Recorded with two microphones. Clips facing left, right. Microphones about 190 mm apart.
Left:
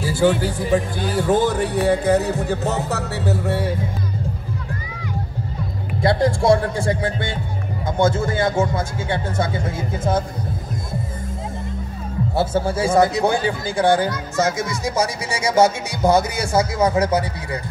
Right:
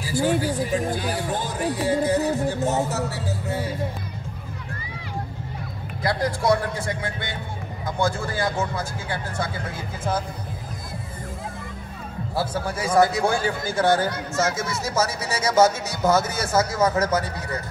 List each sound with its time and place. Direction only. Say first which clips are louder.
0.0 s speech: left 4 dB; 65° left (ahead or behind)
1.2 s music: left 8 dB; 75° left (ahead or behind)
6.0 s speech: left 6 dB; 25° left (ahead or behind)
12.4 s speech: left 6 dB; 25° left (ahead or behind)